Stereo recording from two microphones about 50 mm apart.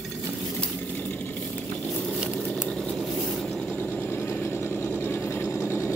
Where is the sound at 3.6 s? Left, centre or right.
Left.